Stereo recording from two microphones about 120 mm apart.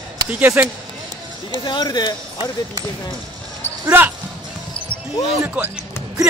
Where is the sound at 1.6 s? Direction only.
35° left (ahead or behind).